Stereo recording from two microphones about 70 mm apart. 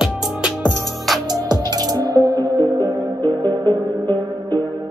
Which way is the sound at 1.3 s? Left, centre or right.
Right.